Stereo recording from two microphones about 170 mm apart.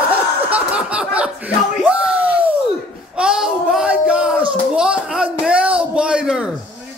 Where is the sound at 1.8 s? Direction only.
5° right (ahead or behind).